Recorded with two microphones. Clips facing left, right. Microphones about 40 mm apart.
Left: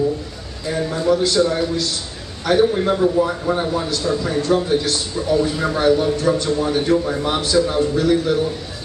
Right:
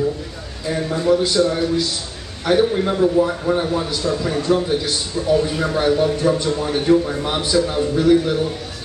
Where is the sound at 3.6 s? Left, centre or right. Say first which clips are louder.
Even; centre.